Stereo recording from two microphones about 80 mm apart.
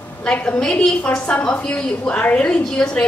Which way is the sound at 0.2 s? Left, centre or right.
Centre.